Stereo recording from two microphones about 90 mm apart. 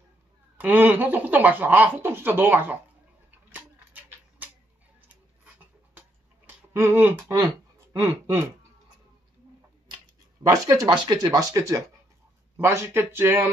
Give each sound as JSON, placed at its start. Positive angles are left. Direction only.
{"t": 0.6, "sound": "speech", "side_deg": -20}
{"t": 3.5, "sound": "a sound", "side_deg": -20}
{"t": 7.2, "sound": "speech", "side_deg": -45}
{"t": 8.0, "sound": "speech", "side_deg": -25}
{"t": 10.5, "sound": "speech", "side_deg": -35}
{"t": 10.9, "sound": "speech", "side_deg": -55}
{"t": 11.3, "sound": "speech", "side_deg": -35}